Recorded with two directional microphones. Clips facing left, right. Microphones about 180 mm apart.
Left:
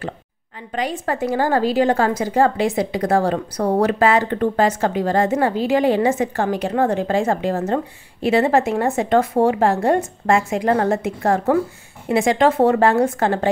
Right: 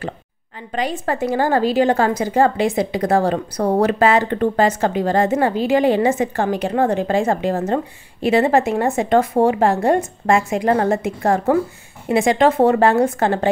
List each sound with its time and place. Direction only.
0.7 s a woman's voice: 30° right (ahead or behind)